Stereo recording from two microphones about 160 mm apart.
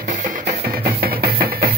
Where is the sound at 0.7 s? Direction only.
70° right (ahead or behind).